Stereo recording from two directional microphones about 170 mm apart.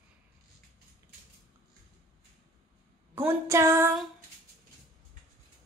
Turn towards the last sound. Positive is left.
turn(degrees=-15)  # may be behind; listen again after turning